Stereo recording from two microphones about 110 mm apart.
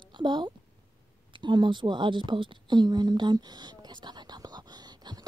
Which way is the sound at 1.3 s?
45° right (ahead or behind).